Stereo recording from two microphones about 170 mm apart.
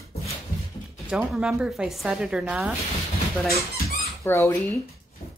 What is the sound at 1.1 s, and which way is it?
Speech, centre (ahead or behind).